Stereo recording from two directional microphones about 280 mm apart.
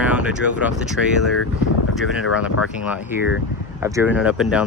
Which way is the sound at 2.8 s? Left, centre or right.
Centre.